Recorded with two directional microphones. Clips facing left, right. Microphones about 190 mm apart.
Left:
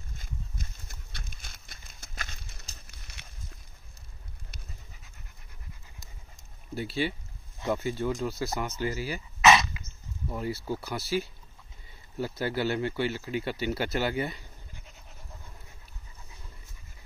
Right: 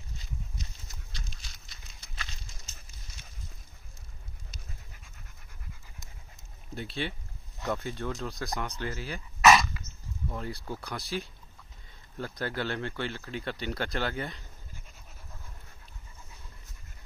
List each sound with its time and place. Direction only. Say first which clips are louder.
0.2 s horse: left 1 dB; 55° left (ahead or behind)
2.9 s clip-clop: left 1 dB; 65° left (ahead or behind)
4.5 s pant: even; 60° left (ahead or behind)
6.7 s speech: left 5 dB; 5° left (ahead or behind)